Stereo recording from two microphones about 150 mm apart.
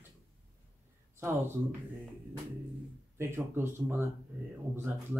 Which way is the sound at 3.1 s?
15° right (ahead or behind).